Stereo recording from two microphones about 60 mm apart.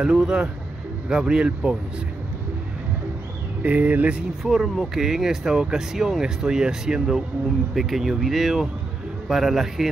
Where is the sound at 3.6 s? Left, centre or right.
Right.